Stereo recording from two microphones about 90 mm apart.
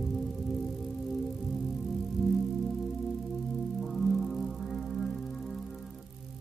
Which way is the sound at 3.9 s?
Centre (ahead or behind).